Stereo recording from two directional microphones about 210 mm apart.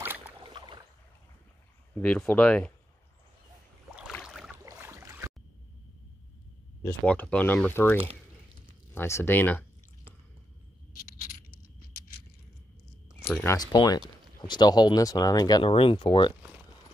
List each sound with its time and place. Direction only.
0.0 s boat: 10° right (ahead or behind)
0.4 s boat: 20° right (ahead or behind)
2.0 s speech: 10° left (ahead or behind)
4.1 s boat: centre (ahead or behind)
4.6 s a sound: 15° right (ahead or behind)
6.8 s speech: 10° left (ahead or behind)
13.3 s speech: 10° left (ahead or behind)